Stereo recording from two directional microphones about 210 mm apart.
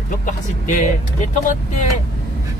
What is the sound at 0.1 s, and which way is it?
Speech, 40° left (ahead or behind).